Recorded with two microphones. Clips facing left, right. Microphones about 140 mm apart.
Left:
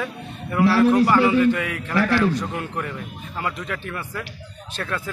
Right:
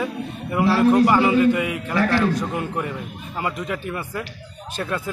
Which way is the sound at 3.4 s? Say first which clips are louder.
Right 3 dB; 15° right (ahead or behind).